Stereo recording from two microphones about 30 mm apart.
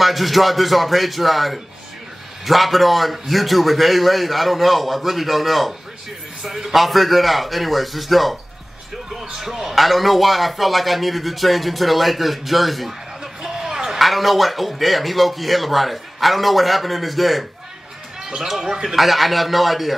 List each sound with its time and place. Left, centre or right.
0.0 s speech: centre
13.2 s a sound: centre
13.8 s speech: centre
18.2 s a sound: centre
18.5 s speech: centre
18.9 s speech: centre